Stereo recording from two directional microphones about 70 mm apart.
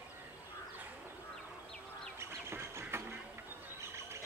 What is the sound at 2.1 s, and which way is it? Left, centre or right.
Music, right.